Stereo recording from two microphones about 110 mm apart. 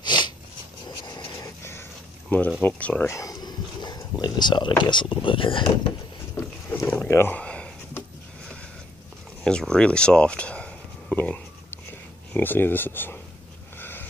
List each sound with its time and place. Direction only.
0.0 s a sound: 40° left (ahead or behind)
1.6 s a sound: 20° left (ahead or behind)
2.6 s speech: 15° left (ahead or behind)
3.1 s a sound: 30° left (ahead or behind)
4.2 s speech: 40° left (ahead or behind)
6.4 s boat: 30° left (ahead or behind)
6.9 s speech: 20° left (ahead or behind)
9.4 s speech: 5° left (ahead or behind)
13.7 s wheeze: 20° left (ahead or behind)